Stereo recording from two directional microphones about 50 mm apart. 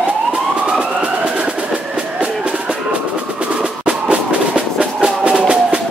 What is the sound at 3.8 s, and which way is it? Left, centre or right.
Music, right.